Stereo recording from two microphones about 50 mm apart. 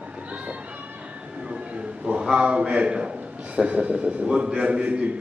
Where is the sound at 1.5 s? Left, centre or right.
Right.